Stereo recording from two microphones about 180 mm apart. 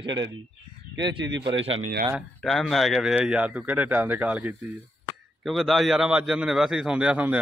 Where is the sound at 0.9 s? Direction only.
85° right.